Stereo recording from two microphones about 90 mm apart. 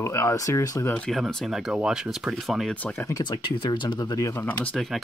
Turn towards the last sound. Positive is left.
turn(degrees=5)  # may be behind; listen again after turning